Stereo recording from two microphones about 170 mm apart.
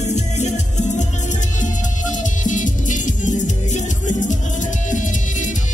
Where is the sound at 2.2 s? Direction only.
50° left (ahead or behind).